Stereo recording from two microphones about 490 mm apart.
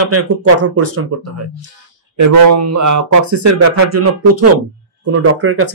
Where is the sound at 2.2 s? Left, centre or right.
Right.